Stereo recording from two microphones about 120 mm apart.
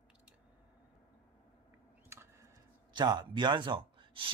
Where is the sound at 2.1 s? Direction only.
20° right (ahead or behind).